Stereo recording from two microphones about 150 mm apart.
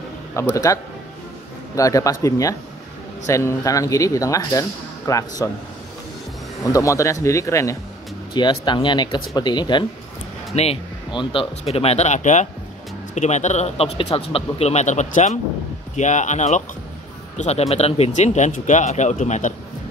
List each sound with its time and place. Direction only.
0.4 s speech: 20° left (ahead or behind)
1.8 s speech: 20° left (ahead or behind)
6.6 s speech: 20° left (ahead or behind)
8.3 s speech: 30° left (ahead or behind)
10.5 s speech: 45° left (ahead or behind)
11.1 s speech: 30° left (ahead or behind)
11.6 s speech: 45° left (ahead or behind)